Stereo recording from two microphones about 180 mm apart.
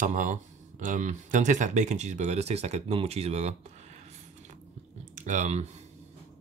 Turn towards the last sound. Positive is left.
turn(degrees=-40)  # may be behind; listen again after turning